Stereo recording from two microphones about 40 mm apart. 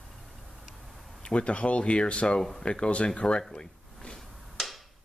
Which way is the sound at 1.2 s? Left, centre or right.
Left.